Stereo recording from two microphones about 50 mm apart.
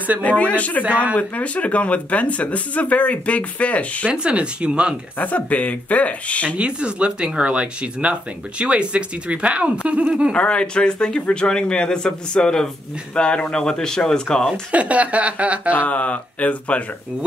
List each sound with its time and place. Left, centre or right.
0.2 s speech: left
4.1 s speech: right
5.2 s speech: left
6.5 s speech: right
10.3 s speech: left
14.7 s speech: right
15.7 s speech: left